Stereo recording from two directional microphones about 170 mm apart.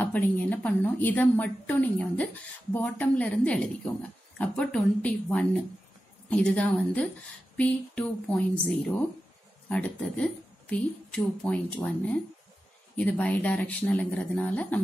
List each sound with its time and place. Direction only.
0.0 s speech: 10° left (ahead or behind)